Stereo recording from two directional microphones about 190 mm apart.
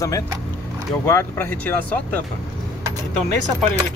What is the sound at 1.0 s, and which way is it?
Speech, 10° left (ahead or behind).